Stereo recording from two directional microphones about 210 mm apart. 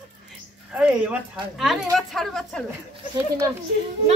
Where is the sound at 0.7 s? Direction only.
5° right (ahead or behind).